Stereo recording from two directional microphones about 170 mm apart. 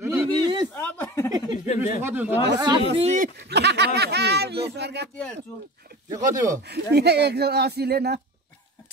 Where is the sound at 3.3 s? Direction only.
75° right (ahead or behind).